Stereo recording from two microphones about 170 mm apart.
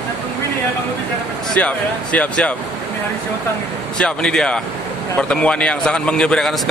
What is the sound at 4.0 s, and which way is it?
A man's voice, 5° left (ahead or behind).